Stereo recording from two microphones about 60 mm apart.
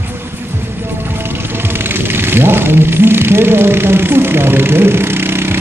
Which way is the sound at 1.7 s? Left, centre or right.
Right.